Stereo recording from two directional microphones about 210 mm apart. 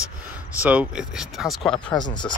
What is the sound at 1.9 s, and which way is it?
Speech, 20° left (ahead or behind).